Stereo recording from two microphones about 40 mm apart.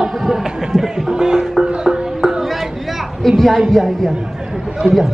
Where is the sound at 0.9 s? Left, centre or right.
Centre.